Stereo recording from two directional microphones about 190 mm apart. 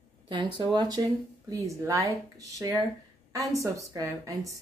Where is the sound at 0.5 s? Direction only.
20° right (ahead or behind).